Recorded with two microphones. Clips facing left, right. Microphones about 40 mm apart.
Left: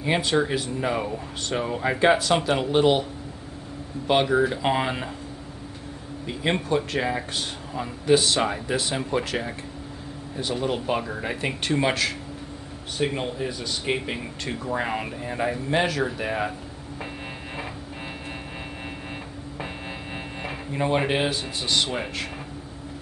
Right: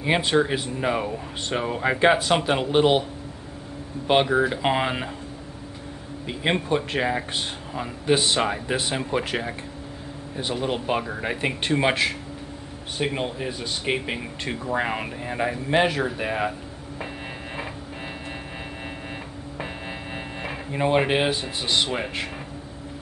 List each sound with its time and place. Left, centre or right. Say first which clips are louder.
0.0 s speech: right 2 dB; right
4.1 s speech: right 1 dB; centre
6.2 s speech: right 1 dB; right
20.7 s speech: right 2 dB; centre